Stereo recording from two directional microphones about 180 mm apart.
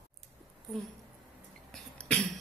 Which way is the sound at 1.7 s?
5° left (ahead or behind).